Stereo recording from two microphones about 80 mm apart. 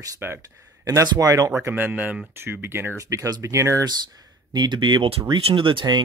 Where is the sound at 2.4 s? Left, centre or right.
Right.